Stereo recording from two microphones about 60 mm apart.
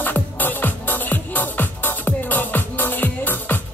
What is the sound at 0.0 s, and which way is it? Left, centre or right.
Music, left.